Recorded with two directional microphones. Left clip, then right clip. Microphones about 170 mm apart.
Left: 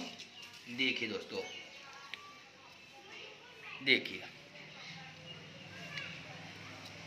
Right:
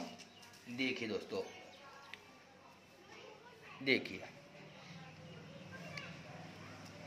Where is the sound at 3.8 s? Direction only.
45° right (ahead or behind).